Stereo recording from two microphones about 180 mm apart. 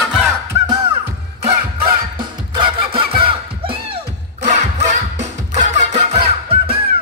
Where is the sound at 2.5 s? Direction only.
25° right (ahead or behind).